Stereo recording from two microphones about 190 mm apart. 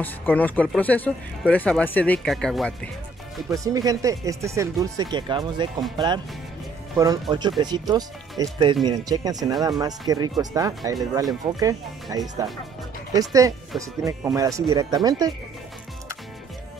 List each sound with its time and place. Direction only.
0.0 s speech: 10° left (ahead or behind)
3.4 s speech: 15° right (ahead or behind)
12.1 s speech: 15° right (ahead or behind)